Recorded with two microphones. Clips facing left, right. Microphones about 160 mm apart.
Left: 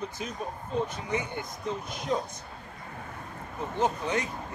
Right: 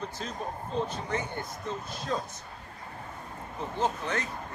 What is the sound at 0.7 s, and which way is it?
A man's voice, 10° left (ahead or behind).